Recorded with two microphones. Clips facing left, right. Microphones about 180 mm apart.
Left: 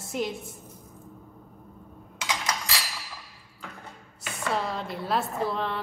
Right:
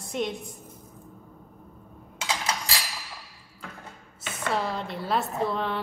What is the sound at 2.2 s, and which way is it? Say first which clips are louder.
Coin: right 1 dB; 30° right (ahead or behind).